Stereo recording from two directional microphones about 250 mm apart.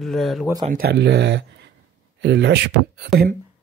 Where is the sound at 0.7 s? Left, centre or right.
Right.